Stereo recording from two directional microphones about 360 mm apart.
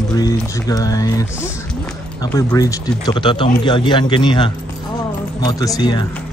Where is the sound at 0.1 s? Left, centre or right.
Centre.